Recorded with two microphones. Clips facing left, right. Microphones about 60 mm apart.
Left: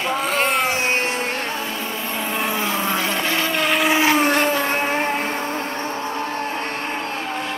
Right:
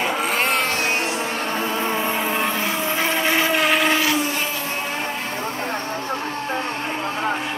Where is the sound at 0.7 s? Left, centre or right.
Left.